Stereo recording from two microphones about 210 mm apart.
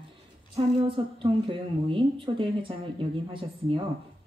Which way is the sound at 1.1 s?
25° right (ahead or behind).